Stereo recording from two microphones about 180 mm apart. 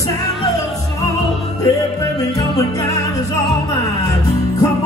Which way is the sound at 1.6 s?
20° left (ahead or behind).